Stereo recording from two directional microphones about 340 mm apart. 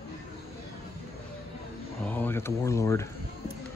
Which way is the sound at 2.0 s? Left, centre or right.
Centre.